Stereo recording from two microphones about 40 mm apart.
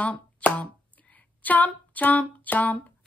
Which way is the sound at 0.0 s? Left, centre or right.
Left.